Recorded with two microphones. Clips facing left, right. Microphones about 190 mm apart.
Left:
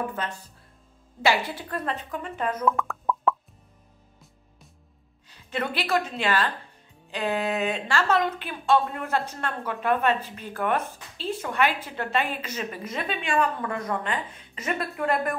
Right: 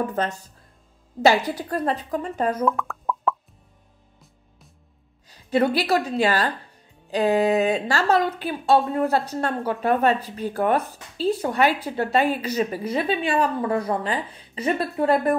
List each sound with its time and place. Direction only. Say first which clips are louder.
0.1 s speech: right 7 dB; 40° right (ahead or behind)
2.5 s plop: right 2 dB; centre (ahead or behind)
5.3 s a woman's voice: right 10 dB; 35° right (ahead or behind)